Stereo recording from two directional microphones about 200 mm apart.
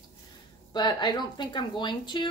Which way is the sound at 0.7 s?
20° left (ahead or behind).